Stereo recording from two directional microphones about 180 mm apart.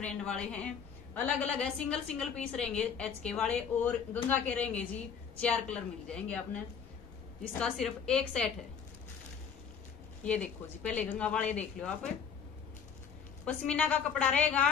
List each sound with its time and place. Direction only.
0.4 s a woman's voice: 5° left (ahead or behind)
10.2 s a woman's voice: 5° left (ahead or behind)
13.5 s a woman's voice: 5° left (ahead or behind)